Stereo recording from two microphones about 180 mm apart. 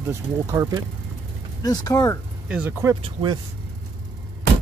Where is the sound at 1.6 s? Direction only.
20° left (ahead or behind).